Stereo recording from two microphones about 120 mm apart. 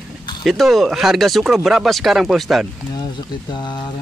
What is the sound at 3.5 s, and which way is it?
Speech, 40° left (ahead or behind).